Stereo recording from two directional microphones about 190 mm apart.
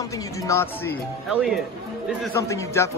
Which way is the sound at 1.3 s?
5° right (ahead or behind).